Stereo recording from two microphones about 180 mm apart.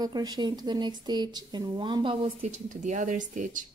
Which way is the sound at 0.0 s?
20° right (ahead or behind).